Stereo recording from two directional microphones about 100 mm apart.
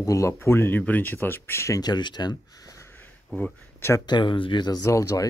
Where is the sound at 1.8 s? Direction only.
45° left (ahead or behind).